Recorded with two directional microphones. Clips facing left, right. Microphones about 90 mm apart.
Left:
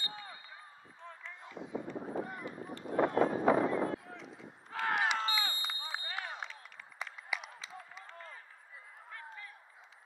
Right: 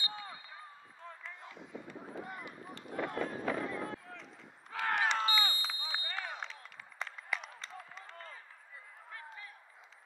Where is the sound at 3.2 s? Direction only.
35° left (ahead or behind).